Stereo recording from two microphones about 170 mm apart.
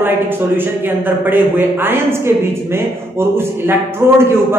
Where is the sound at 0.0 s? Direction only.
10° right (ahead or behind).